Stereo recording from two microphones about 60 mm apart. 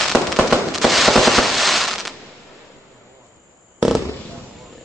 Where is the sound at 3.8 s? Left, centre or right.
Centre.